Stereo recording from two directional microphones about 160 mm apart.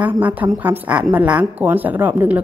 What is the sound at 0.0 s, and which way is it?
A woman's voice, 10° right (ahead or behind).